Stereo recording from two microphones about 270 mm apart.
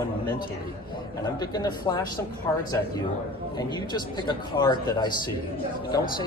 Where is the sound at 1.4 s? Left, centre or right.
Centre.